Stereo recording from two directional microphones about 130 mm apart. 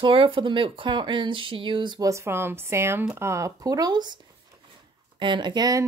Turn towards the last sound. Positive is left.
turn(degrees=-30)  # may be behind; listen again after turning